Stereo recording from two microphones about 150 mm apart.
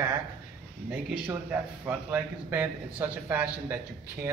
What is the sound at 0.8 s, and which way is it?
A man's voice, 10° right (ahead or behind).